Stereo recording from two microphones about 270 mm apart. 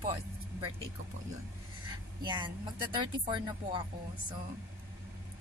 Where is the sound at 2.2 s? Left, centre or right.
Centre.